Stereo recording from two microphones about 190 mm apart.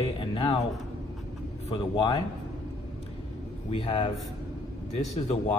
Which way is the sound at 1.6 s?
25° left (ahead or behind).